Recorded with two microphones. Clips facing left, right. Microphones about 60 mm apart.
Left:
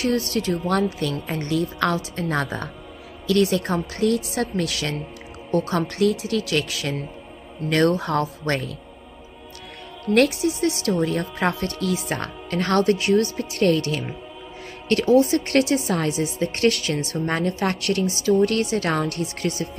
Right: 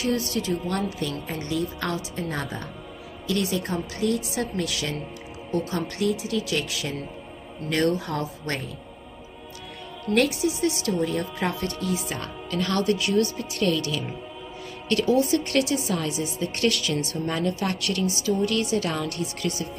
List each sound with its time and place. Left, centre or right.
0.3 s a woman's voice: left
0.9 s a woman's voice: left
1.5 s a woman's voice: left
8.0 s a woman's voice: left
10.1 s a woman's voice: left
12.1 s speech: left
14.9 s a woman's voice: left